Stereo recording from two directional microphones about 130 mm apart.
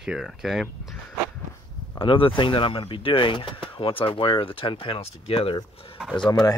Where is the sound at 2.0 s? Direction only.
40° left (ahead or behind).